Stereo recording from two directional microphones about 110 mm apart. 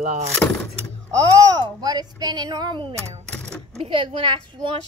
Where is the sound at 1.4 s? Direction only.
35° right (ahead or behind).